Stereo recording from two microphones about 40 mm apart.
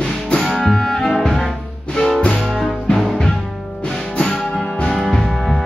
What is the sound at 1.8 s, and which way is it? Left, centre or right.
Music, centre.